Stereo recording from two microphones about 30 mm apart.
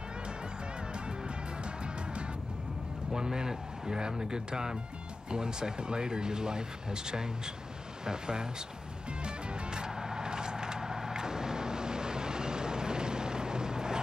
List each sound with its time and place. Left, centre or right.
3.1 s speech: right
9.2 s vehicle: right